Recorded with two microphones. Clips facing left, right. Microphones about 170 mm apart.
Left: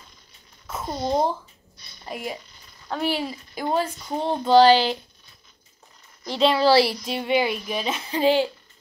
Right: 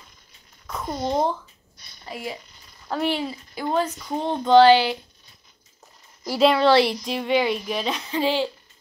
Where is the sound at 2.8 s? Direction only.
Centre (ahead or behind).